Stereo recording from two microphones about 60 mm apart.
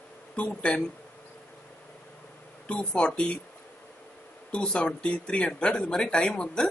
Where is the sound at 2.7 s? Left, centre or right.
Centre.